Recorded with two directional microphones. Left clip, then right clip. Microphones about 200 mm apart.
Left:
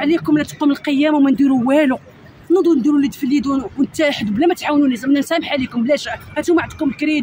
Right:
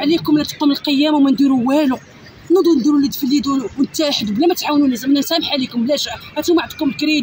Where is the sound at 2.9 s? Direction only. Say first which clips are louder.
Right 1 dB; 25° left (ahead or behind).